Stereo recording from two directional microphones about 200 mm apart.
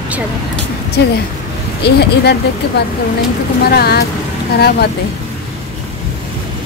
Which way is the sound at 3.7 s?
50° left (ahead or behind).